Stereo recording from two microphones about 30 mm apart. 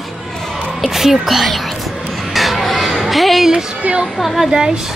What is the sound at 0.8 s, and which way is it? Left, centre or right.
Speech, centre.